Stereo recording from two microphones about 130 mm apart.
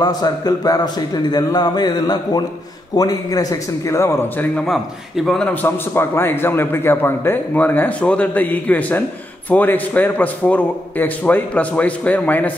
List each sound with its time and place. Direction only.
0.0 s a man's voice: 30° left (ahead or behind)
4.6 s a man's voice: centre (ahead or behind)